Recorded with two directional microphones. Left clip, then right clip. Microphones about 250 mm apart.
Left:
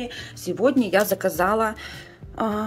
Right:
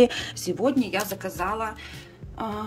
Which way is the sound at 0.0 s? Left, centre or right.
Centre.